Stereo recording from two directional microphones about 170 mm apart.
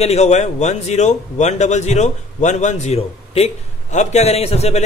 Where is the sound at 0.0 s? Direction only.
40° left (ahead or behind).